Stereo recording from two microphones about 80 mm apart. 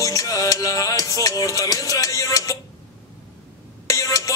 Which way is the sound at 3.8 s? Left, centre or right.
Left.